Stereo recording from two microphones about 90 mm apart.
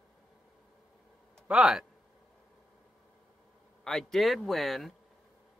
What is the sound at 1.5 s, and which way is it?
Speech, 10° right (ahead or behind).